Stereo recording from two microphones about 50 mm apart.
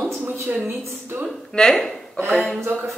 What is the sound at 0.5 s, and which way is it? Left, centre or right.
Speech, centre.